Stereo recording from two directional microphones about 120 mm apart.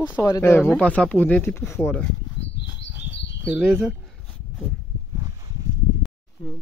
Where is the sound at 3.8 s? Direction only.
Centre (ahead or behind).